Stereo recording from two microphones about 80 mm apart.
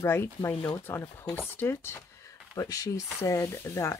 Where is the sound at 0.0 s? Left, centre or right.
Left.